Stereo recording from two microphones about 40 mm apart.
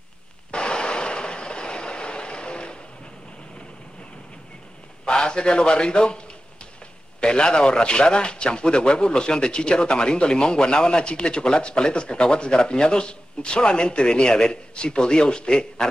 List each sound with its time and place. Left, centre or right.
0.5 s vehicle: left
5.0 s a man's voice: left